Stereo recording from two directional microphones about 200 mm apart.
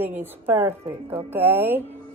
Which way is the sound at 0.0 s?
10° right (ahead or behind).